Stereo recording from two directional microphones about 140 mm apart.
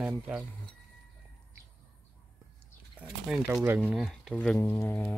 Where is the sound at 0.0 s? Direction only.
5° right (ahead or behind).